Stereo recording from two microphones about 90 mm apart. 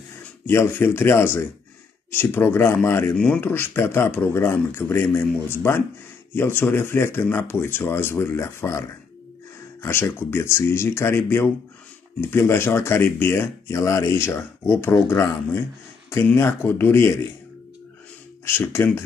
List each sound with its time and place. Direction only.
0.5 s speech: 25° left (ahead or behind)
18.4 s speech: 25° left (ahead or behind)